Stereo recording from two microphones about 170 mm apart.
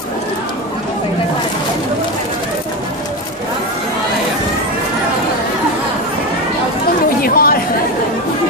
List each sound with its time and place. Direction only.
7.2 s chatter: 60° left (ahead or behind)